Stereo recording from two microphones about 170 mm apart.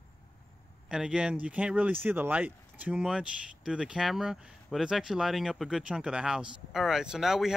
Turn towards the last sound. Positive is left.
turn(degrees=-5)  # may be behind; listen again after turning